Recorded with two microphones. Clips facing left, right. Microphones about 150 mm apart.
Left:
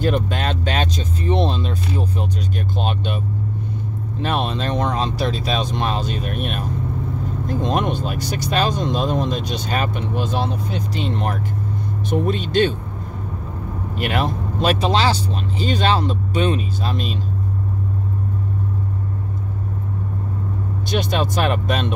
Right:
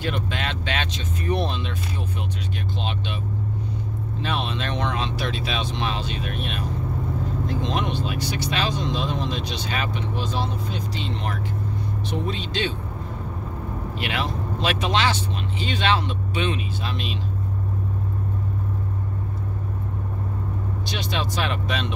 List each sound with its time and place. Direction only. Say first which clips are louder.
0.0 s vehicle: left 7 dB; 40° left (ahead or behind)
1.2 s music: left 4 dB; 25° left (ahead or behind)
2.8 s speech: left 7 dB; 45° left (ahead or behind)
4.2 s speech: left 6 dB; 50° left (ahead or behind)
13.9 s speech: left 7 dB; 45° left (ahead or behind)
20.9 s speech: left 8 dB; 50° left (ahead or behind)